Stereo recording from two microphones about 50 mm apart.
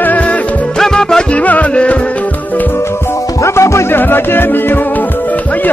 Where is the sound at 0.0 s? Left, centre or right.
Left.